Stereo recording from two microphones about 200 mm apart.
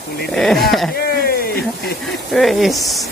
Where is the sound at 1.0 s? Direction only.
50° left (ahead or behind).